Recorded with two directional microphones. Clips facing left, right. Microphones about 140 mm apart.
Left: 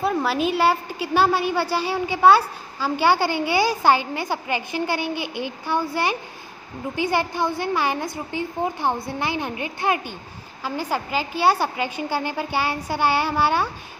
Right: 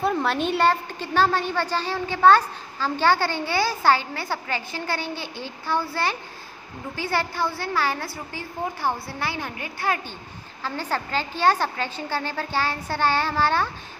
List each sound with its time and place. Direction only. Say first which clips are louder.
0.0 s a woman's voice: left 1 dB; 5° left (ahead or behind)